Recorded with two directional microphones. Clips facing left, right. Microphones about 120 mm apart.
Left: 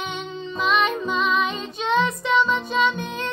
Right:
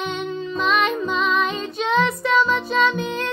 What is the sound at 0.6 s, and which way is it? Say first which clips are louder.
Music: even; centre (ahead or behind).